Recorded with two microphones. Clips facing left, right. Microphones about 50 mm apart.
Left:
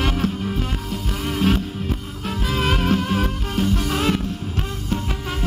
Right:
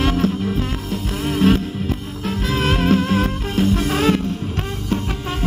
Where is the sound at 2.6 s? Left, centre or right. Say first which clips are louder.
Right 3 dB; right.